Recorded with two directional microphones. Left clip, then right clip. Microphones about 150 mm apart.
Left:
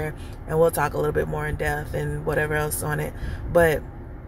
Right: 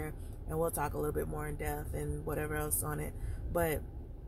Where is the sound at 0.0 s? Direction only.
25° right (ahead or behind).